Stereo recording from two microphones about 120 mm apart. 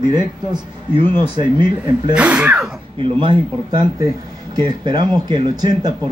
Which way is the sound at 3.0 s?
45° right (ahead or behind).